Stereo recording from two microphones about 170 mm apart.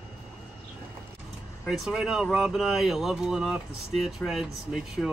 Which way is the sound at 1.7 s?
5° right (ahead or behind).